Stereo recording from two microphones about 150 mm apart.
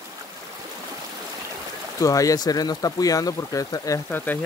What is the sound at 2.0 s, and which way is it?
Speech, 20° left (ahead or behind).